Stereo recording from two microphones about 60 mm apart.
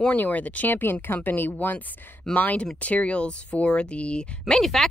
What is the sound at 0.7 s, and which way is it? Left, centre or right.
Speech, left.